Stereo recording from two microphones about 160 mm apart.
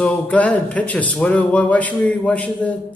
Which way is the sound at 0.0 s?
10° left (ahead or behind).